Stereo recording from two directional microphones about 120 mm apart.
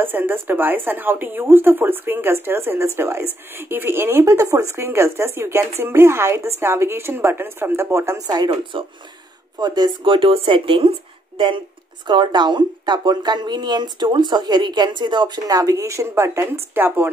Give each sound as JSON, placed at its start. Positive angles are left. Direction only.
{"t": 0.0, "sound": "speech", "side_deg": -15}
{"t": 8.3, "sound": "speech", "side_deg": -35}